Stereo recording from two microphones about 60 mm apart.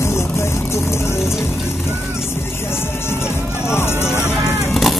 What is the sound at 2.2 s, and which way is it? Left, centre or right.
Vehicle, left.